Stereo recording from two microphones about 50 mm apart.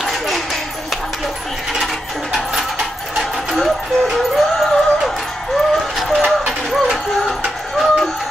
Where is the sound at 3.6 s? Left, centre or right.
Centre.